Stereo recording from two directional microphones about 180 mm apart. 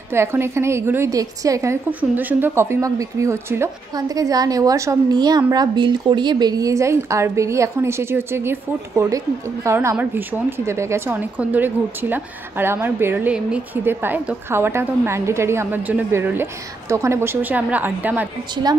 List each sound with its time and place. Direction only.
0.1 s speech: 15° right (ahead or behind)